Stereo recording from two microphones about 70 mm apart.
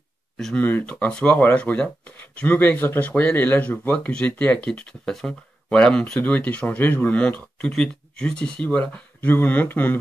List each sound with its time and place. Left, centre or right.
0.6 s speech: left
0.8 s speech: centre